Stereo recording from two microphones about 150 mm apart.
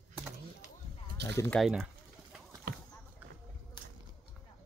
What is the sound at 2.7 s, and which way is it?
Rowboat, 90° right.